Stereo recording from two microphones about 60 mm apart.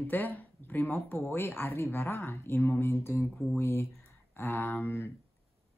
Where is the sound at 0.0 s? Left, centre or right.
Left.